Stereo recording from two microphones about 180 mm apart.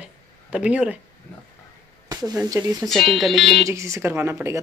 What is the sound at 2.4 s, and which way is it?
Speech, 20° right (ahead or behind).